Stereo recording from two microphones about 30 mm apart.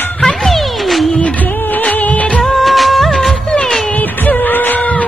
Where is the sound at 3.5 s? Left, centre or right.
Left.